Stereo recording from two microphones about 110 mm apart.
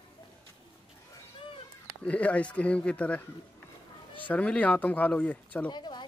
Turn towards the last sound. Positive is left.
turn(degrees=40)  # may be behind; listen again after turning